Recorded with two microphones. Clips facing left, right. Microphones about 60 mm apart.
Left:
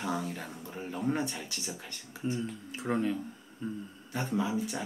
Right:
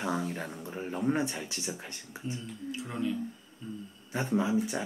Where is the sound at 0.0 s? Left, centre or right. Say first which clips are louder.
Right 2 dB; centre.